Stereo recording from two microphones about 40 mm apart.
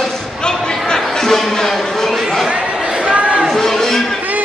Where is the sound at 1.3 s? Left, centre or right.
Centre.